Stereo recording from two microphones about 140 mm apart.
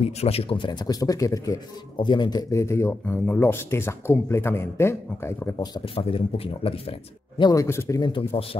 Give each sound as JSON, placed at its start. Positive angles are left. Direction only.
{"t": 0.0, "sound": "speech", "side_deg": 50}
{"t": 5.6, "sound": "a man's voice", "side_deg": 40}
{"t": 7.5, "sound": "speech", "side_deg": 20}
{"t": 8.0, "sound": "a man's voice", "side_deg": 40}